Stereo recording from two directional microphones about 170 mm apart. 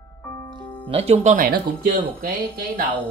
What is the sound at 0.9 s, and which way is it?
Speech, 35° right (ahead or behind).